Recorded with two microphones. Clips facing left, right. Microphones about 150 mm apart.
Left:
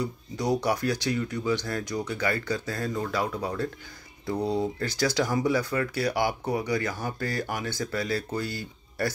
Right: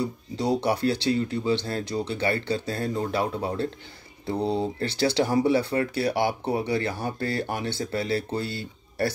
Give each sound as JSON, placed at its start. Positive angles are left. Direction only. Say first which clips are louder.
{"t": 0.0, "sound": "speech", "louder": "right 2 dB", "side_deg": -25}